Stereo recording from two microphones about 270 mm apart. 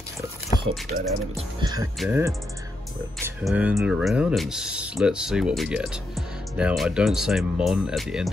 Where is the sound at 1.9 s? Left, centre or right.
Centre.